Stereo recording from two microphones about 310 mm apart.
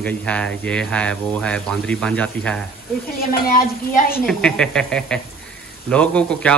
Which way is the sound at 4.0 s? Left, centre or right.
Left.